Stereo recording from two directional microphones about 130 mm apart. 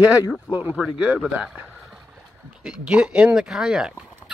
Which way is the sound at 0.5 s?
10° right (ahead or behind).